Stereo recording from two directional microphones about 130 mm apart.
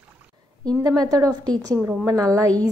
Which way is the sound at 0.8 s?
30° right (ahead or behind).